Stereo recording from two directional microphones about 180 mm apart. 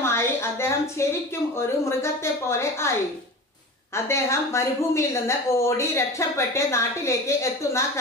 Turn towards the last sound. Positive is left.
turn(degrees=15)  # may be behind; listen again after turning